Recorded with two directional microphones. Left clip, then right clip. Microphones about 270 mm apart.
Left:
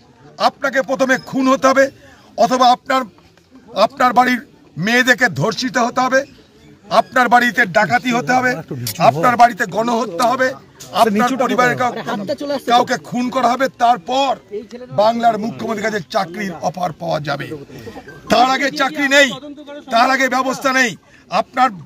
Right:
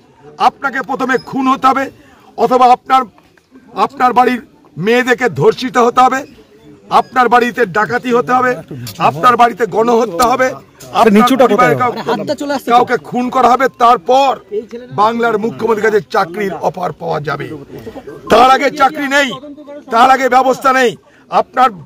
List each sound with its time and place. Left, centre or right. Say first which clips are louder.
0.4 s speech: right 3 dB; centre
6.9 s speech: right 3 dB; centre
11.1 s speech: right 7 dB; centre
11.4 s speech: right 5 dB; centre
12.3 s speech: right 4 dB; centre
12.6 s speech: right 4 dB; centre